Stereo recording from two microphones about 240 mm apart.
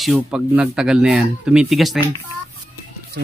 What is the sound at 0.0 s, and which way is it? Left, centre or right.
Speech, centre.